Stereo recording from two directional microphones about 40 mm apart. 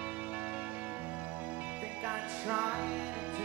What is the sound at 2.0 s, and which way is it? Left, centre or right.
Music, right.